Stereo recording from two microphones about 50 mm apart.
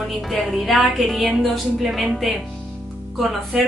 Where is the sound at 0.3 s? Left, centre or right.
Centre.